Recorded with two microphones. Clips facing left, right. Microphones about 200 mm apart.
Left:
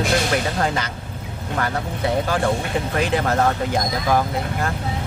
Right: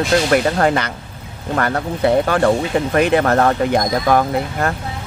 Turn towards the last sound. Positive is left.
turn(degrees=-65)  # may be behind; listen again after turning